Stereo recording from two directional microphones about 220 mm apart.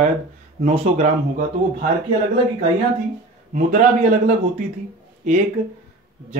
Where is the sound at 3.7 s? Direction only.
35° right (ahead or behind).